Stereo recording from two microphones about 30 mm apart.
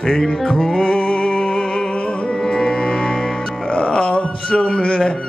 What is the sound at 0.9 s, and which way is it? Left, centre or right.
Music, left.